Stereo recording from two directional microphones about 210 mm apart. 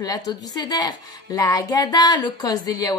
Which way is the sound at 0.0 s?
20° left (ahead or behind).